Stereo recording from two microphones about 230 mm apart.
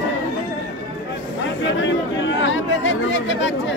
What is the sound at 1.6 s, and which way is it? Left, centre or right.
Speech, left.